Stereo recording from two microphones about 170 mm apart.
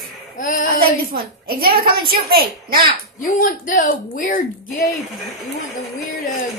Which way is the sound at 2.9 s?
55° left (ahead or behind).